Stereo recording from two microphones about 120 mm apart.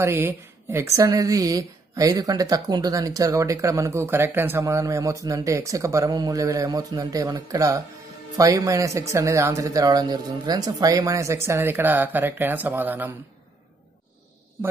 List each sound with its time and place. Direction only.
0.0 s a woman's voice: 20° right (ahead or behind)